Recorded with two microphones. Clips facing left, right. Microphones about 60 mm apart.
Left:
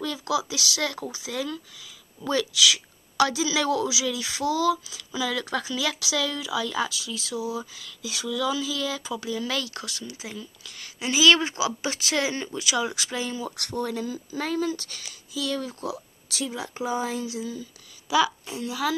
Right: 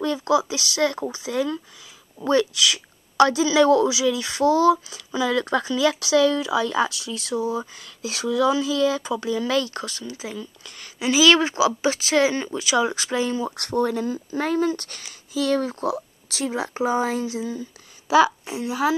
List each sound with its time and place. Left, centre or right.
0.0 s speech: right
11.0 s speech: right
16.8 s speech: right